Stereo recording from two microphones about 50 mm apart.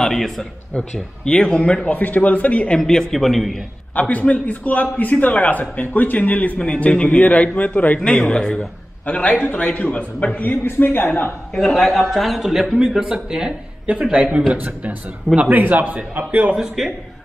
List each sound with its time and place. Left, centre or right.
0.0 s a man's voice: centre
0.7 s a man's voice: centre
2.0 s a man's voice: left
2.8 s a man's voice: centre
3.9 s a man's voice: left
6.6 s a man's voice: centre
8.0 s a man's voice: left
10.4 s a man's voice: left
11.5 s a man's voice: centre
14.1 s a man's voice: right
16.8 s a man's voice: centre